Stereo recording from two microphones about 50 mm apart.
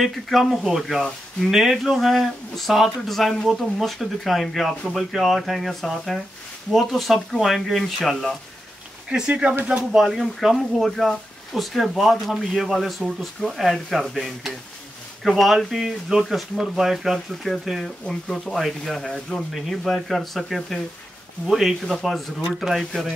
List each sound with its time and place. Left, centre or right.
0.0 s speech: centre
9.3 s speech: right
9.9 s speech: centre